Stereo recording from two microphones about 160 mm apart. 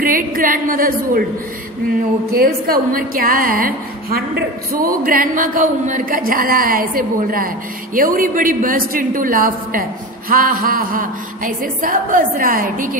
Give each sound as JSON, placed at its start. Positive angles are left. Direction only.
{"t": 0.0, "sound": "a woman's voice", "side_deg": -60}
{"t": 2.3, "sound": "a woman's voice", "side_deg": -65}